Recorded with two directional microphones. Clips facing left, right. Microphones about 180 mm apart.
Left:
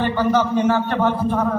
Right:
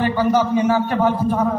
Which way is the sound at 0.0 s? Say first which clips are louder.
Right 1 dB; 10° right (ahead or behind).